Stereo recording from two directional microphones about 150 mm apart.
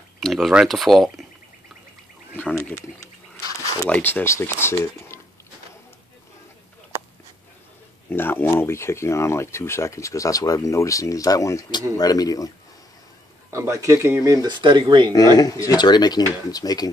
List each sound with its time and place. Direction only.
0.2 s speech: centre (ahead or behind)
2.3 s speech: 15° left (ahead or behind)
8.1 s speech: 15° left (ahead or behind)
13.5 s speech: 20° right (ahead or behind)
15.6 s speech: 25° left (ahead or behind)